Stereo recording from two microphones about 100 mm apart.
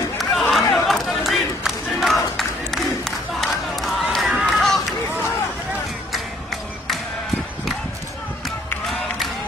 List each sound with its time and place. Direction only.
0.2 s crowd: centre (ahead or behind)
4.5 s run: centre (ahead or behind)
8.8 s a sound: centre (ahead or behind)